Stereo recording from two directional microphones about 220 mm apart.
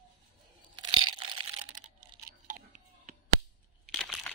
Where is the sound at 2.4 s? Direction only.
35° right (ahead or behind).